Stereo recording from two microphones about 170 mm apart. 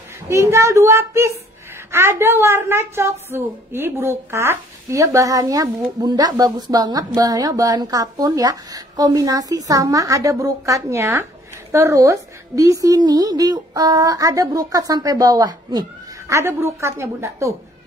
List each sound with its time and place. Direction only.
0.3 s a woman's voice: 15° right (ahead or behind)